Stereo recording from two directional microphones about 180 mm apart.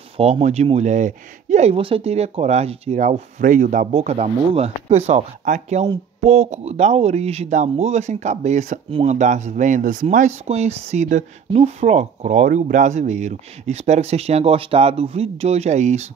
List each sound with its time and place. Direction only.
0.2 s speech: 40° right (ahead or behind)